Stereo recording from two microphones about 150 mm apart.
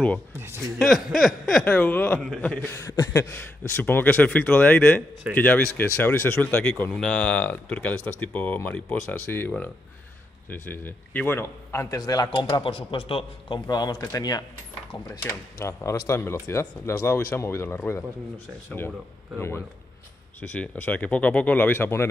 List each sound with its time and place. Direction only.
0.4 s speech: 20° right (ahead or behind)
0.7 s a man's voice: centre (ahead or behind)